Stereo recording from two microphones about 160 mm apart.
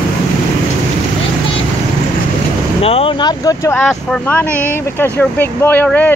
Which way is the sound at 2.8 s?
35° left (ahead or behind).